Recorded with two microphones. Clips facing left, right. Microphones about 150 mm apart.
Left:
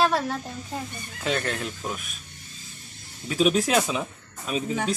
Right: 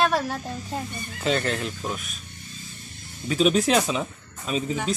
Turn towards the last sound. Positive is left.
turn(degrees=5)  # may be behind; listen again after turning